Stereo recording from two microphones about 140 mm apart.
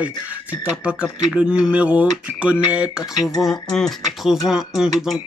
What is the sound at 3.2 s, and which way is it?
Speech, 25° left (ahead or behind).